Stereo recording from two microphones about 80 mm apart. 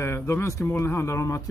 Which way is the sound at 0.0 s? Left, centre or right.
Left.